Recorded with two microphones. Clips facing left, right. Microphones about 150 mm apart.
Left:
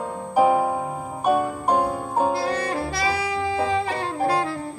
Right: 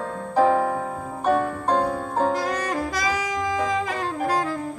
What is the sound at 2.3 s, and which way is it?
Saxophone, 35° left (ahead or behind).